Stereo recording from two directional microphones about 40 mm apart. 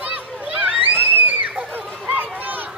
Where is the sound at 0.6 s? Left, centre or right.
Right.